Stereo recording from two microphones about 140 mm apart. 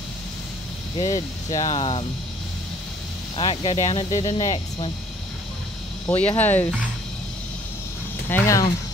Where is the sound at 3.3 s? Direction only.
35° left (ahead or behind).